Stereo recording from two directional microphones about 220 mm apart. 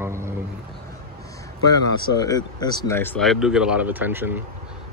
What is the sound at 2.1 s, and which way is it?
Speech, 15° left (ahead or behind).